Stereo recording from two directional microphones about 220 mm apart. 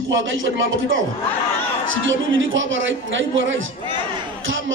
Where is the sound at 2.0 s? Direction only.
60° right (ahead or behind).